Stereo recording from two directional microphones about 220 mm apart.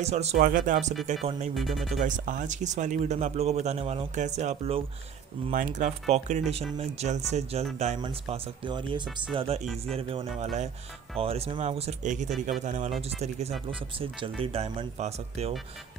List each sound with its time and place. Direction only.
0.0 s speech: 30° right (ahead or behind)
1.5 s speech: centre (ahead or behind)
2.0 s speech: 35° right (ahead or behind)